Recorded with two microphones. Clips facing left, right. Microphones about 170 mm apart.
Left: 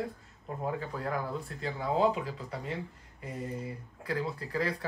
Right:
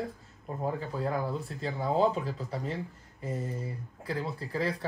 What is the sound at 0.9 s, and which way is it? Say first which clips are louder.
Speech: right 3 dB; 25° right (ahead or behind).